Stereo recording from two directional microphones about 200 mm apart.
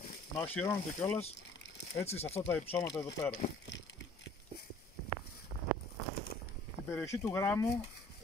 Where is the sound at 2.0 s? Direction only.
30° left (ahead or behind).